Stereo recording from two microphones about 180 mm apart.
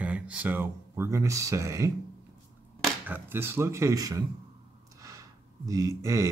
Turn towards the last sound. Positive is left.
turn(degrees=-15)  # may be behind; listen again after turning